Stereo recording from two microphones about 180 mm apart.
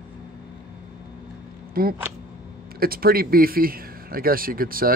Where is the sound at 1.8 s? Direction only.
55° right (ahead or behind).